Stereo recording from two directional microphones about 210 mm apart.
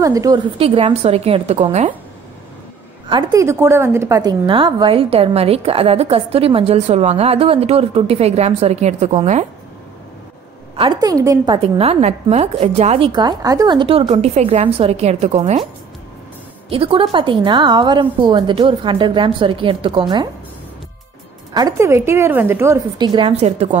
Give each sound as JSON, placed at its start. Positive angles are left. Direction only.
{"t": 0.0, "sound": "a woman's voice", "side_deg": -15}
{"t": 3.1, "sound": "a woman's voice", "side_deg": -20}
{"t": 10.8, "sound": "a woman's voice", "side_deg": -20}
{"t": 16.6, "sound": "a woman's voice", "side_deg": -25}
{"t": 21.5, "sound": "a woman's voice", "side_deg": -15}